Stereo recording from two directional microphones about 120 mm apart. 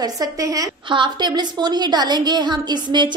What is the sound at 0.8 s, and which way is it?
A woman's voice, 40° right (ahead or behind).